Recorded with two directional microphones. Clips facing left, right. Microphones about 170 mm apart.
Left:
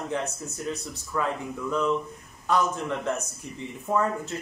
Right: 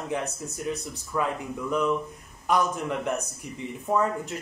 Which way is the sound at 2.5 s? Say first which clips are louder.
Even; 15° right (ahead or behind).